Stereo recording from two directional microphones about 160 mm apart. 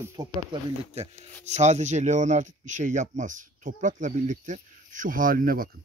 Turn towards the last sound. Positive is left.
turn(degrees=-65)  # may be behind; listen again after turning